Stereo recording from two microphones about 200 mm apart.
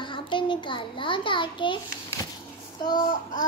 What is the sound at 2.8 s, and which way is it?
Speech, 20° left (ahead or behind).